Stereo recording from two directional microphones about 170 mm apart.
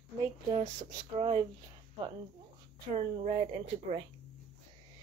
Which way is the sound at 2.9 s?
40° right (ahead or behind).